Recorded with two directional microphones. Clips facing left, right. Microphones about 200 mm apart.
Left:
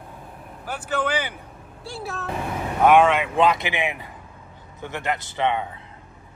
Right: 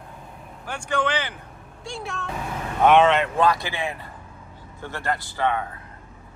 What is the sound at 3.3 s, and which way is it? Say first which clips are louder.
Speech: left 2 dB; 20° left (ahead or behind).